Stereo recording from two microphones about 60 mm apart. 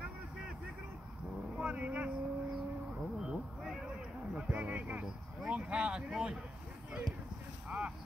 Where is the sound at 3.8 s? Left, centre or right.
Centre.